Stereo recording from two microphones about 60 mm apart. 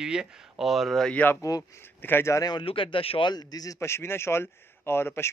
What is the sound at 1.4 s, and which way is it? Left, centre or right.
Speech, left.